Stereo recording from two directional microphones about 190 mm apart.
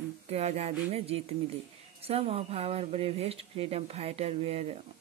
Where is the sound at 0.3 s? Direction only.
35° right (ahead or behind).